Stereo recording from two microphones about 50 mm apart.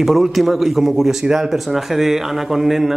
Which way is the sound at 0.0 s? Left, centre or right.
Centre.